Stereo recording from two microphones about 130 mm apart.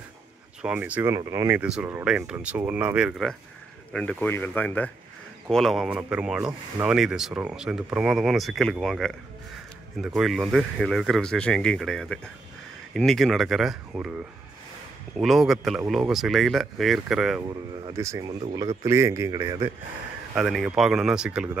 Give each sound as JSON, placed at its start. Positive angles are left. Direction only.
{"t": 0.6, "sound": "speech", "side_deg": -10}
{"t": 1.1, "sound": "speech", "side_deg": -25}
{"t": 1.6, "sound": "speech", "side_deg": -10}
{"t": 3.9, "sound": "speech", "side_deg": 10}
{"t": 5.5, "sound": "speech", "side_deg": 0}
{"t": 5.9, "sound": "speech", "side_deg": -10}
{"t": 15.1, "sound": "speech", "side_deg": 0}
{"t": 17.5, "sound": "speech", "side_deg": -35}
{"t": 17.9, "sound": "speech", "side_deg": -25}
{"t": 18.9, "sound": "speech", "side_deg": -20}
{"t": 20.3, "sound": "speech", "side_deg": -5}